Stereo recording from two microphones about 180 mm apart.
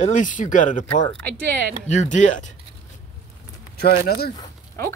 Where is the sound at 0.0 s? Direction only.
45° left (ahead or behind).